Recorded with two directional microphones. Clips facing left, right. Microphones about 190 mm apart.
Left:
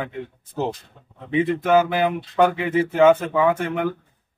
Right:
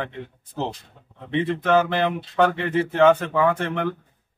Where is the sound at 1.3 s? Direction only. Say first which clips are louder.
Left 2 dB; 10° left (ahead or behind).